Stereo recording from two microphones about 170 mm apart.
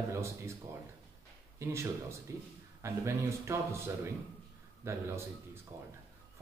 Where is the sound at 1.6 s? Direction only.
15° right (ahead or behind).